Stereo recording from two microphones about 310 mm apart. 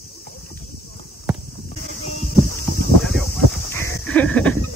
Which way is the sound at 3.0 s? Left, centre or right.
Centre.